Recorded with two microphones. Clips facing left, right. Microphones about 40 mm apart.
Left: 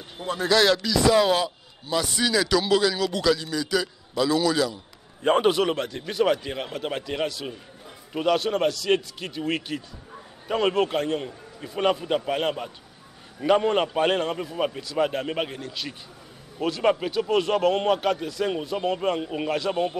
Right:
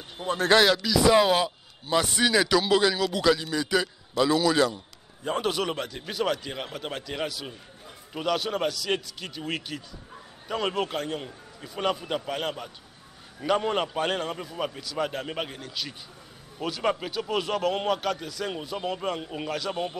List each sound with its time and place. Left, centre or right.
0.3 s speech: right
0.7 s a man's voice: centre
1.9 s a man's voice: right
5.5 s a man's voice: centre